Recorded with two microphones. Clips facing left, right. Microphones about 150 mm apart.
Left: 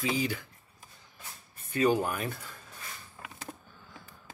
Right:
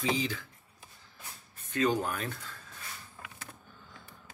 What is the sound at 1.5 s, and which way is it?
Speech, 10° left (ahead or behind).